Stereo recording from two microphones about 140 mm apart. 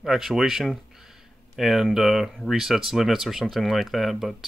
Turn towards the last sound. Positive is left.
turn(degrees=0)  # may be behind; listen again after turning